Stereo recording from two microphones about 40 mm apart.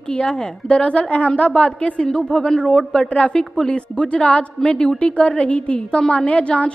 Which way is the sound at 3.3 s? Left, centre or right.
Centre.